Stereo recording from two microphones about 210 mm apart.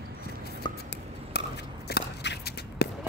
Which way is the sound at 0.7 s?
20° left (ahead or behind).